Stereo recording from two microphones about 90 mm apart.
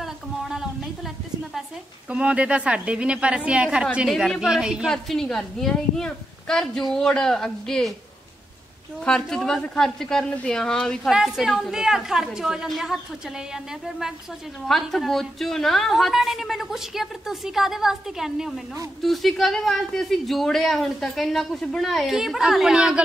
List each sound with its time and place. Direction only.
0.0 s a sound: 5° right (ahead or behind)
2.0 s a woman's voice: 15° right (ahead or behind)
4.1 s a woman's voice: 5° left (ahead or behind)
4.8 s speech: 5° left (ahead or behind)
9.0 s a woman's voice: 5° left (ahead or behind)
11.1 s speech: 5° right (ahead or behind)
14.7 s speech: centre (ahead or behind)